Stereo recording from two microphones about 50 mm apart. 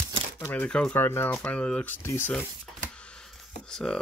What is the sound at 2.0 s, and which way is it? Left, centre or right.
Speech, left.